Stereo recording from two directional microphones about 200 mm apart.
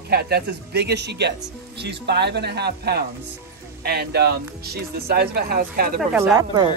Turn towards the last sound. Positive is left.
turn(degrees=-20)  # may be behind; listen again after turning